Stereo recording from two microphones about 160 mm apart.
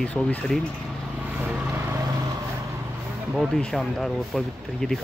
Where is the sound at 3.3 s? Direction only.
Centre (ahead or behind).